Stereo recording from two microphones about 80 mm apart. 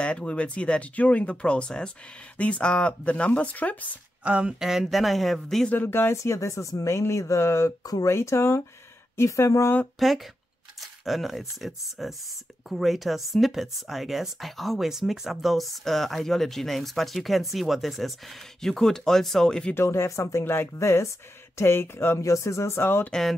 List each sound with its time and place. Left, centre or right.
0.0 s speech: centre
4.2 s speech: centre
5.7 s speech: left
9.9 s speech: centre
19.7 s speech: left